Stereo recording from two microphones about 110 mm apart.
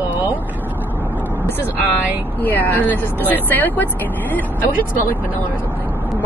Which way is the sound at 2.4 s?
15° left (ahead or behind).